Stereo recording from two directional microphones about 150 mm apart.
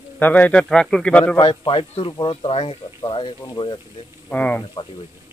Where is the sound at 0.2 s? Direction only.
10° left (ahead or behind).